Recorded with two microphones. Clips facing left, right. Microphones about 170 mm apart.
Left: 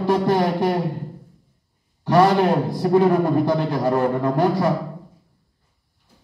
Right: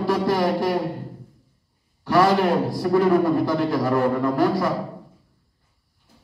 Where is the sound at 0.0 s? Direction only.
20° left (ahead or behind).